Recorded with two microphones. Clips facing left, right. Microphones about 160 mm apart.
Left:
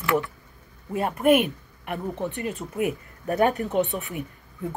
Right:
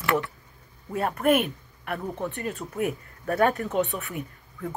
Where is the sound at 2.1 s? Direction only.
20° left (ahead or behind).